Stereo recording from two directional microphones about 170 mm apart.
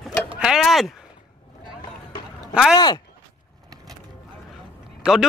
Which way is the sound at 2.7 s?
25° left (ahead or behind).